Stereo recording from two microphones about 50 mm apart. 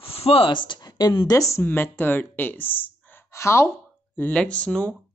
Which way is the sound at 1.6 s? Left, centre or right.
Left.